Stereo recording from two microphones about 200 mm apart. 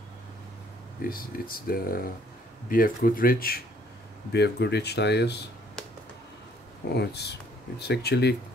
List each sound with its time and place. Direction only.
1.0 s speech: 45° left (ahead or behind)
6.9 s speech: 55° left (ahead or behind)